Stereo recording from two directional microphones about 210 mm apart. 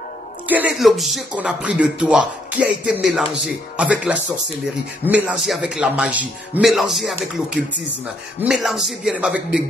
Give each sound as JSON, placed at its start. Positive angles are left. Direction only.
{"t": 0.5, "sound": "speech", "side_deg": -5}